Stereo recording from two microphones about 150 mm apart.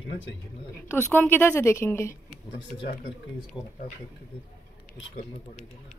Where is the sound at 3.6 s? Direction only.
25° left (ahead or behind).